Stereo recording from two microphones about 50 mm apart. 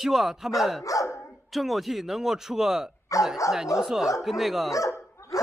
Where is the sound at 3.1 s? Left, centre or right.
Left.